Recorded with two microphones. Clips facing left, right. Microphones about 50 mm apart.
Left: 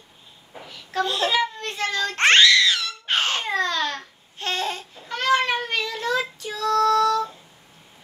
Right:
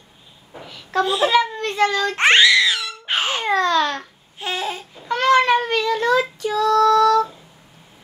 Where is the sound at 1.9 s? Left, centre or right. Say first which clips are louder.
Even; centre.